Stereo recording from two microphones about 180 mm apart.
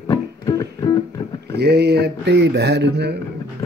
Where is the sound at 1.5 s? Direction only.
65° right (ahead or behind).